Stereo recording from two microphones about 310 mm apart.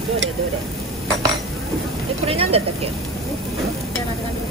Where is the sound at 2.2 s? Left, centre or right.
Centre.